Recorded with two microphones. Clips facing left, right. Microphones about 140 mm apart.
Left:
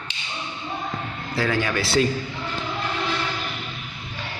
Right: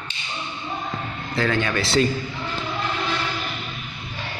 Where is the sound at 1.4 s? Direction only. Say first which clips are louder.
Right 1 dB; 10° left (ahead or behind).